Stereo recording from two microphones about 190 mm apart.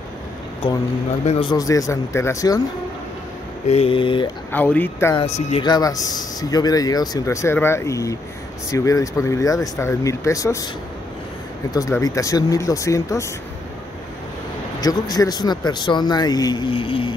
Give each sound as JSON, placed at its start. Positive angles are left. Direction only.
{"t": 1.2, "sound": "a man's voice", "side_deg": 35}
{"t": 1.5, "sound": "speech", "side_deg": 20}
{"t": 3.6, "sound": "a man's voice", "side_deg": 30}
{"t": 4.5, "sound": "speech", "side_deg": 10}
{"t": 5.1, "sound": "a man's voice", "side_deg": 30}
{"t": 11.7, "sound": "speech", "side_deg": 20}
{"t": 14.8, "sound": "a man's voice", "side_deg": 20}